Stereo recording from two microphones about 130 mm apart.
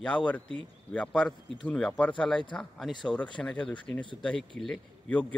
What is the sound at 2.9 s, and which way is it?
Speech, 35° left (ahead or behind).